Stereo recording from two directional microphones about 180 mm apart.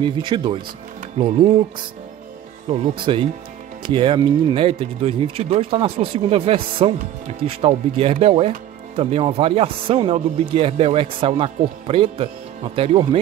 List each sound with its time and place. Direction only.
0.0 s speech: 25° right (ahead or behind)
2.7 s speech: 35° right (ahead or behind)